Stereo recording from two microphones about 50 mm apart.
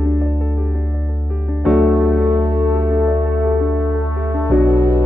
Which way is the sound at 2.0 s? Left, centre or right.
Right.